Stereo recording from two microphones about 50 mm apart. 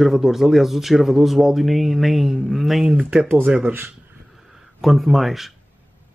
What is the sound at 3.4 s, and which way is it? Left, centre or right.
Speech, right.